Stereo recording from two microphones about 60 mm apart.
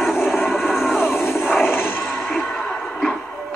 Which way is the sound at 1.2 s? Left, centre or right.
Centre.